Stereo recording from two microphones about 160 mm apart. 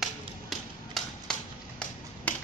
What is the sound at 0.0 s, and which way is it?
Music, centre (ahead or behind).